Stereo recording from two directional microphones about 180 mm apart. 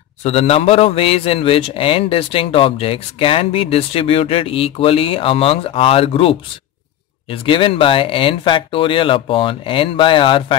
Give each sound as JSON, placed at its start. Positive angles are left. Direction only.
{"t": 0.2, "sound": "a man's voice", "side_deg": 35}